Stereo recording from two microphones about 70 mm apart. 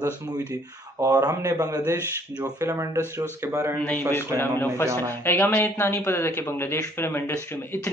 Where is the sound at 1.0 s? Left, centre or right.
Right.